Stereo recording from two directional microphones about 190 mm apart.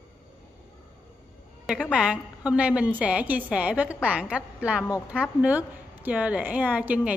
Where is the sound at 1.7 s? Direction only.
5° right (ahead or behind).